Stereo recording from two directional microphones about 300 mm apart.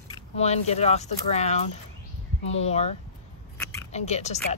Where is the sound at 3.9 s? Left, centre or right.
Left.